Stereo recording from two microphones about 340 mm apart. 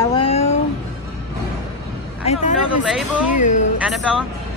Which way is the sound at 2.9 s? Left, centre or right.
Centre.